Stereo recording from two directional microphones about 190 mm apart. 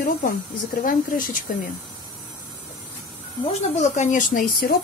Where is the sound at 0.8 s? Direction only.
45° left (ahead or behind).